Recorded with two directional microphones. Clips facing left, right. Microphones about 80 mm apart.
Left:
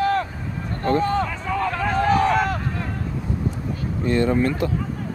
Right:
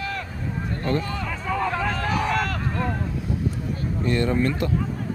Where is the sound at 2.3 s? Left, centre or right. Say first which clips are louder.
Left 4 dB; left.